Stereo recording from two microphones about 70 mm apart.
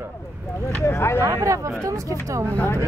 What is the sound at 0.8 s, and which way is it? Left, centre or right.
Speech, left.